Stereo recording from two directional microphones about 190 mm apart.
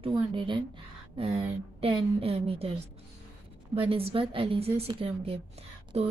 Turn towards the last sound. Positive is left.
turn(degrees=-35)  # may be behind; listen again after turning